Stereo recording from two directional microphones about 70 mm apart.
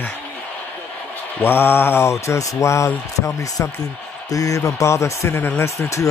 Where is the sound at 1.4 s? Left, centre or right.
Left.